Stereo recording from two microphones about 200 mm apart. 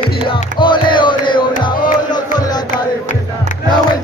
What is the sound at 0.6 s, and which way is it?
Music, 25° left (ahead or behind).